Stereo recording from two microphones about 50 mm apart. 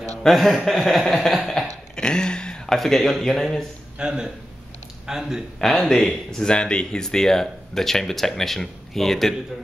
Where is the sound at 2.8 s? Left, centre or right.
Centre.